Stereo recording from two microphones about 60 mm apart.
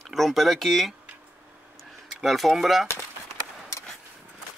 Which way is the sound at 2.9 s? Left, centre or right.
Left.